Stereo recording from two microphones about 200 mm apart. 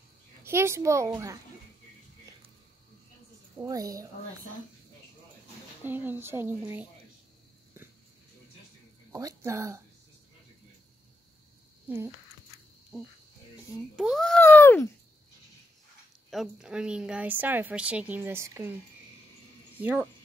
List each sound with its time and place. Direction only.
0.4 s a woman's voice: 10° right (ahead or behind)
3.5 s a woman's voice: 15° right (ahead or behind)
5.9 s a woman's voice: 10° right (ahead or behind)
9.1 s a woman's voice: 15° right (ahead or behind)
13.9 s a child's voice: centre (ahead or behind)
16.3 s a woman's voice: centre (ahead or behind)
19.8 s a woman's voice: 10° right (ahead or behind)